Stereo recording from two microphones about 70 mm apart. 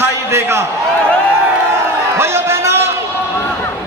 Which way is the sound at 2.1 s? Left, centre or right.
Right.